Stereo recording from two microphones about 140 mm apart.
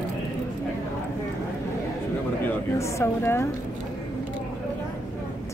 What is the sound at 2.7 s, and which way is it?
Speech, 20° left (ahead or behind).